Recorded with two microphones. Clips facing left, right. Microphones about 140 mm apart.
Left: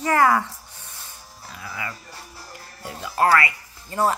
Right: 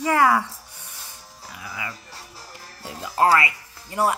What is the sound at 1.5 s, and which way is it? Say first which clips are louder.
Music: left 1 dB; 15° right (ahead or behind).